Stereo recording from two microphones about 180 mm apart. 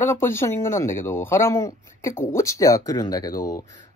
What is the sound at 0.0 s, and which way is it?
Speech, 15° left (ahead or behind).